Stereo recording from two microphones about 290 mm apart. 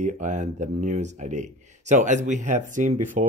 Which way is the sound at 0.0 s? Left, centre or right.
Right.